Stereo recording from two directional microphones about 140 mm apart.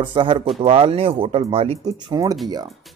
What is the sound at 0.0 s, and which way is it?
Speech, 35° right (ahead or behind).